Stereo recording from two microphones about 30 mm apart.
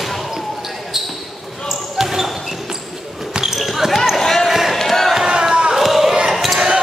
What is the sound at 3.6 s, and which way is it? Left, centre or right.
Basketball bounce, centre.